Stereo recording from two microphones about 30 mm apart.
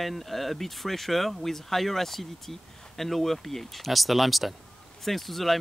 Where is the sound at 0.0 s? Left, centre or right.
Centre.